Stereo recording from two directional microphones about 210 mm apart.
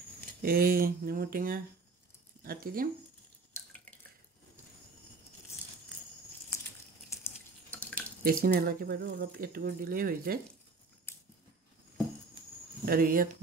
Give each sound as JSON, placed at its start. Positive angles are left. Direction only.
{"t": 0.4, "sound": "speech", "side_deg": -45}
{"t": 7.2, "sound": "drip", "side_deg": 5}
{"t": 8.2, "sound": "speech", "side_deg": -45}
{"t": 11.1, "sound": "a sound", "side_deg": 10}
{"t": 12.8, "sound": "speech", "side_deg": -45}